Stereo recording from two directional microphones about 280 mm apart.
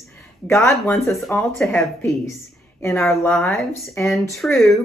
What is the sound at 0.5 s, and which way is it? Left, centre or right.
Speech, centre.